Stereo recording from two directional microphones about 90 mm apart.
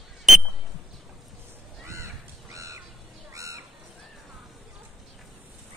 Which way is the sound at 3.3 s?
35° right (ahead or behind).